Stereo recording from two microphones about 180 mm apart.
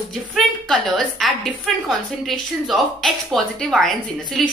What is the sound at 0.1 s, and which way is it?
A woman's voice, centre (ahead or behind).